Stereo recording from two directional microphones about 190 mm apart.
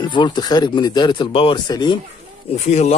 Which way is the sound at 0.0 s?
25° left (ahead or behind).